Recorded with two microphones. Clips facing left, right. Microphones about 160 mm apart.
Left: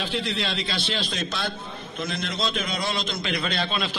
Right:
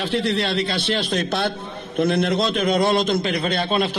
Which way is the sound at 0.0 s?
70° right (ahead or behind).